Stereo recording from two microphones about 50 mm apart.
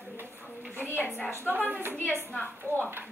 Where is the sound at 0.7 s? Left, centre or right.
Right.